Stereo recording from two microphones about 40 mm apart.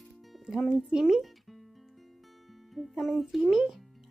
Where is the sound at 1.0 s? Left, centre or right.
Centre.